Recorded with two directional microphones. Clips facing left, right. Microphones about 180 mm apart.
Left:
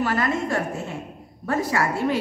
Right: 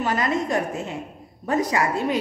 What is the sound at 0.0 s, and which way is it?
A woman's voice, 20° right (ahead or behind).